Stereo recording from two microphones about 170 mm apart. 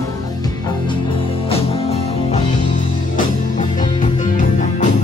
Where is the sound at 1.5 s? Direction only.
35° left (ahead or behind).